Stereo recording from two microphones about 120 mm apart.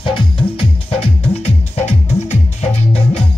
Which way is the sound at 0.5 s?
55° left (ahead or behind).